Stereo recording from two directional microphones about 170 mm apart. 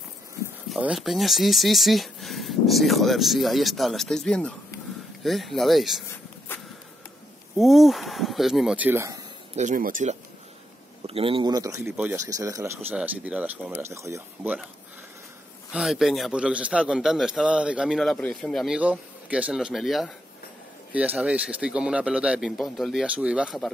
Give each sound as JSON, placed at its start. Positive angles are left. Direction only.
{"t": 0.7, "sound": "a man's voice", "side_deg": -5}
{"t": 7.5, "sound": "a man's voice", "side_deg": 0}
{"t": 9.6, "sound": "speech", "side_deg": -50}
{"t": 11.1, "sound": "a man's voice", "side_deg": -35}
{"t": 15.7, "sound": "a man's voice", "side_deg": 0}